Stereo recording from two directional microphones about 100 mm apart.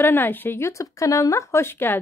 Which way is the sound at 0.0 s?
20° left (ahead or behind).